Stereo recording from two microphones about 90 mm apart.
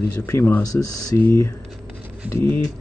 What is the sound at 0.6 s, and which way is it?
Speech, 40° left (ahead or behind).